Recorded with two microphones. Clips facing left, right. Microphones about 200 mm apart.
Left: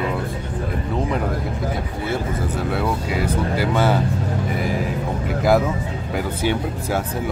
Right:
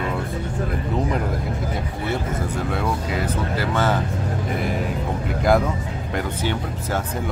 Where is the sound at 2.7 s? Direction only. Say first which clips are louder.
Left 3 dB; 5° left (ahead or behind).